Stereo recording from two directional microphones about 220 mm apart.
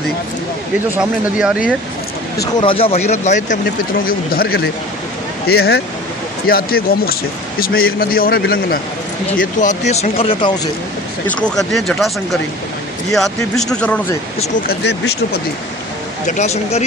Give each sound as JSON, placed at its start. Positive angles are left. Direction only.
{"t": 0.9, "sound": "speech", "side_deg": -5}
{"t": 2.4, "sound": "speech", "side_deg": 20}
{"t": 11.4, "sound": "speech", "side_deg": 0}
{"t": 13.1, "sound": "speech", "side_deg": 0}
{"t": 14.7, "sound": "speech", "side_deg": 50}
{"t": 16.3, "sound": "speech", "side_deg": 30}